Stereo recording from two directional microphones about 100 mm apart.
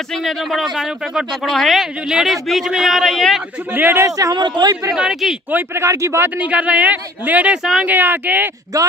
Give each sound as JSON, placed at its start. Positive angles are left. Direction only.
{"t": 0.1, "sound": "speech", "side_deg": 0}
{"t": 3.7, "sound": "speech", "side_deg": -20}
{"t": 4.2, "sound": "speech", "side_deg": -45}
{"t": 4.9, "sound": "speech", "side_deg": -5}
{"t": 5.5, "sound": "speech", "side_deg": -20}
{"t": 8.7, "sound": "speech", "side_deg": -35}